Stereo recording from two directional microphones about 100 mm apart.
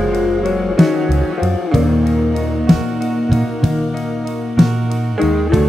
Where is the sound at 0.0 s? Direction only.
Centre (ahead or behind).